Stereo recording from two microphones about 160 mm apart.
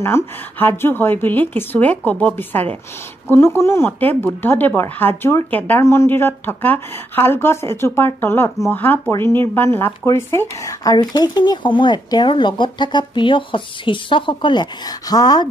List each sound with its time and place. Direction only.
0.0 s speech: 15° left (ahead or behind)